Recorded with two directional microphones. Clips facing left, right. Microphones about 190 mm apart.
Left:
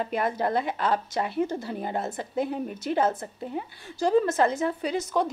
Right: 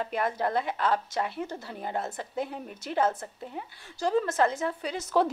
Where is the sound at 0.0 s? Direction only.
10° left (ahead or behind).